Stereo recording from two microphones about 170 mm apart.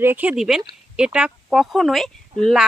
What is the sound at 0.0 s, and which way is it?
A woman's voice, 10° right (ahead or behind).